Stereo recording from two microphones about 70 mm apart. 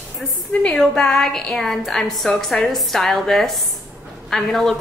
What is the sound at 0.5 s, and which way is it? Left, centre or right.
A woman's voice, centre.